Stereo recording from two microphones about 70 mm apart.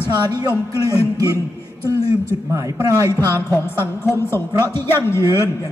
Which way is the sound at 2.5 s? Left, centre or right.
Right.